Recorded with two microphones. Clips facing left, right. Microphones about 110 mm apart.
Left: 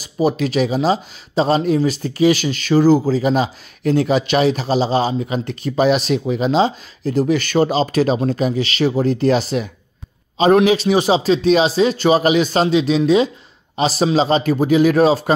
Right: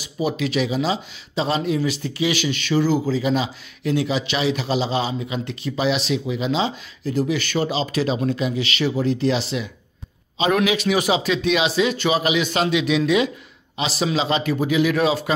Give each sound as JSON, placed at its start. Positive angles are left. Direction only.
{"t": 0.0, "sound": "a man's voice", "side_deg": 40}